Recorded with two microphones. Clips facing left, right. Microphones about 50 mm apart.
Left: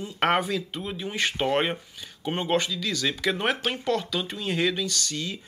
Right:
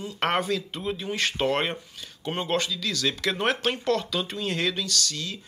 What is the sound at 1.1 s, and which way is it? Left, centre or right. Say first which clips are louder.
Speech: left 1 dB; centre.